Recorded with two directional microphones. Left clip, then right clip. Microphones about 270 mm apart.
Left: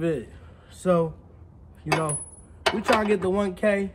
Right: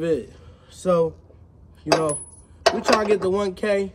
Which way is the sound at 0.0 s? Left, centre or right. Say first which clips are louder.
Right 4 dB; centre.